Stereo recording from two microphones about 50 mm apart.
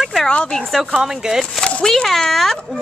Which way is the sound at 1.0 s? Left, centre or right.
Centre.